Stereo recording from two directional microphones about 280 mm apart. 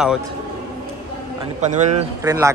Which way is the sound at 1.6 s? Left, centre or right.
Right.